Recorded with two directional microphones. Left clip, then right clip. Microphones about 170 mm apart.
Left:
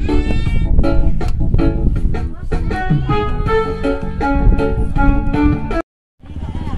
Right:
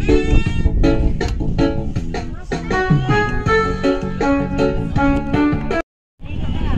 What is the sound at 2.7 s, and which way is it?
Music, 35° right (ahead or behind).